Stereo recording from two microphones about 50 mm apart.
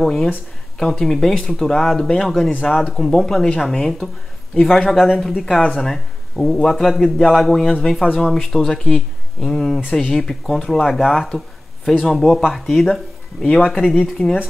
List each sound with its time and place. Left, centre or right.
0.0 s speech: centre
14.2 s speech: left